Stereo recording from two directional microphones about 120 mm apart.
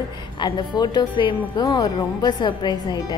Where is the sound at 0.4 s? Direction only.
40° left (ahead or behind).